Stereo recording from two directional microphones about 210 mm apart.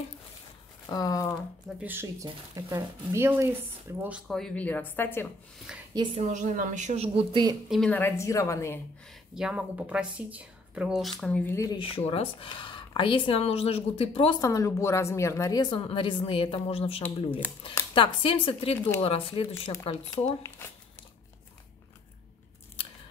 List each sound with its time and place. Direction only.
0.8 s a sound: 15° left (ahead or behind)
1.8 s speech: 10° right (ahead or behind)
4.0 s speech: centre (ahead or behind)
5.9 s a woman's voice: 30° right (ahead or behind)
7.7 s speech: 5° left (ahead or behind)
9.3 s speech: 5° right (ahead or behind); by 20.7 s 15° left (ahead or behind)